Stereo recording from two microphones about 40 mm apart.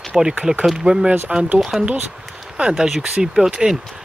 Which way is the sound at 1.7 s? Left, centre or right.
Centre.